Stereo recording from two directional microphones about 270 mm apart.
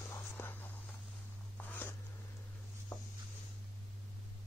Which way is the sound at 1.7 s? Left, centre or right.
Centre.